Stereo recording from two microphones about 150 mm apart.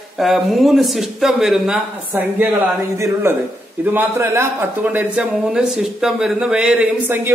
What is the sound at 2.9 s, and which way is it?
A man's voice, 20° right (ahead or behind).